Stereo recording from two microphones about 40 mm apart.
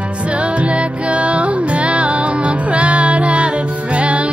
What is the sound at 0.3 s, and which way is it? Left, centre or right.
Music, right.